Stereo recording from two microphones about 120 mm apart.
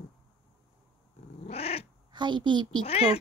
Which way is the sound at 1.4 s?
55° left (ahead or behind).